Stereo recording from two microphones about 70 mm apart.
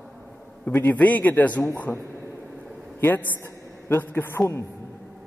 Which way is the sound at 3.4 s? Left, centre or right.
Left.